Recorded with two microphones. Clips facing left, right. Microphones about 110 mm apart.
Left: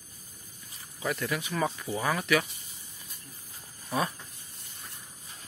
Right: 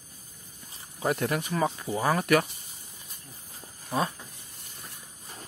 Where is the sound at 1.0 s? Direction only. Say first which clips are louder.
Right 4 dB; 50° right (ahead or behind).